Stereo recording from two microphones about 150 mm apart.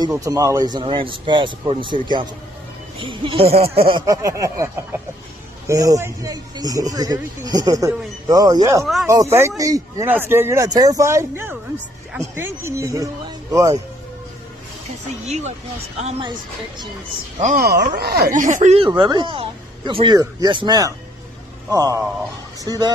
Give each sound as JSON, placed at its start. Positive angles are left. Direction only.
{"t": 0.0, "sound": "a man's voice", "side_deg": -20}
{"t": 4.0, "sound": "speech", "side_deg": -20}
{"t": 5.7, "sound": "speech", "side_deg": -20}
{"t": 15.0, "sound": "speech", "side_deg": -50}
{"t": 16.2, "sound": "speech", "side_deg": -30}
{"t": 17.4, "sound": "speech", "side_deg": -55}
{"t": 17.9, "sound": "speech", "side_deg": -90}
{"t": 18.8, "sound": "speech", "side_deg": -30}